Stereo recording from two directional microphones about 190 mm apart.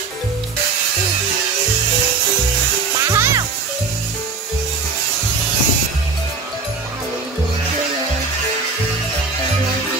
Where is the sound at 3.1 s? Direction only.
15° right (ahead or behind).